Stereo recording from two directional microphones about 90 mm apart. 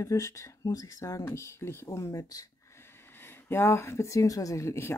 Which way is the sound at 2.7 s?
30° left (ahead or behind).